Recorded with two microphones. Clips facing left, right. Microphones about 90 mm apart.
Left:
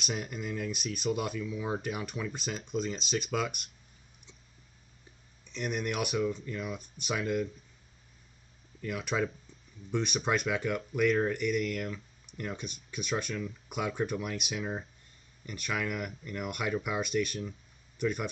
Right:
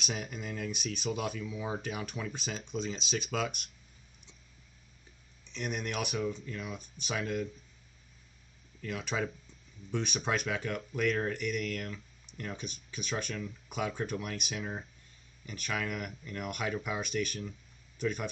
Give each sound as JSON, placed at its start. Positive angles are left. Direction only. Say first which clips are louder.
{"t": 0.0, "sound": "speech", "louder": "left 2 dB", "side_deg": 0}
{"t": 5.5, "sound": "speech", "louder": "left 3 dB", "side_deg": 0}
{"t": 8.8, "sound": "speech", "louder": "left 3 dB", "side_deg": 5}